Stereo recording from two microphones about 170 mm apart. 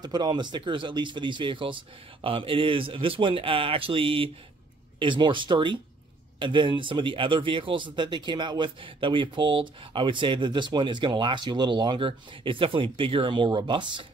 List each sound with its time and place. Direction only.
0.0 s speech: 25° right (ahead or behind)